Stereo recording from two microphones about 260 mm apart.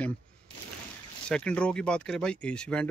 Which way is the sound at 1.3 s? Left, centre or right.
Centre.